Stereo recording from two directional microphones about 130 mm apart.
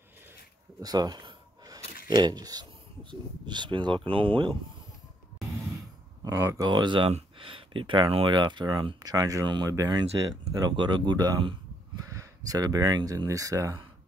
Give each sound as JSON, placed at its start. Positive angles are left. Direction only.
{"t": 0.7, "sound": "a sound", "side_deg": -30}
{"t": 3.1, "sound": "speech", "side_deg": -35}
{"t": 6.2, "sound": "speech", "side_deg": -25}
{"t": 6.7, "sound": "speech", "side_deg": -35}
{"t": 7.1, "sound": "speech", "side_deg": -50}